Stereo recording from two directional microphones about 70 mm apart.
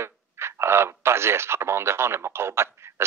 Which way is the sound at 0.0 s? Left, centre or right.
Right.